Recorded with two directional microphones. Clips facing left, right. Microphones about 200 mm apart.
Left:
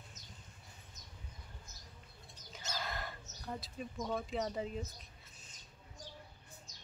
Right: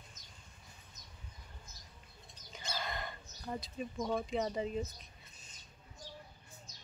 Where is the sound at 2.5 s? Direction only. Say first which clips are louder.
Right 1 dB; centre (ahead or behind).